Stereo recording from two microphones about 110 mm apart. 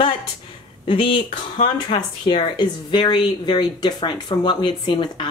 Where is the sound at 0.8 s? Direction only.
50° left (ahead or behind).